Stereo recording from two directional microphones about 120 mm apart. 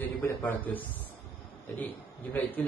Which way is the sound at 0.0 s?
15° left (ahead or behind).